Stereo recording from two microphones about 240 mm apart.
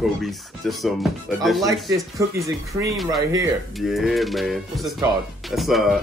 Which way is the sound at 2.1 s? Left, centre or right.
Centre.